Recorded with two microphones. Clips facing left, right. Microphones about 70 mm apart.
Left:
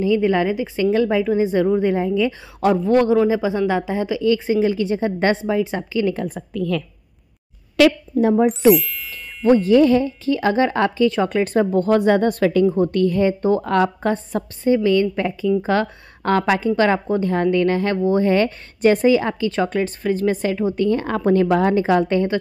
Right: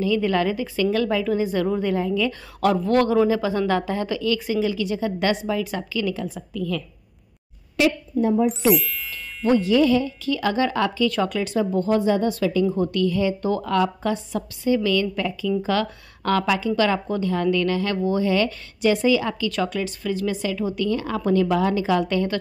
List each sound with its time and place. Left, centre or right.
0.0 s speech: left
6.2 s speech: left
7.7 s a woman's voice: left
8.7 s speech: centre
9.4 s a woman's voice: left
11.3 s speech: left
12.6 s a woman's voice: left
13.7 s a woman's voice: left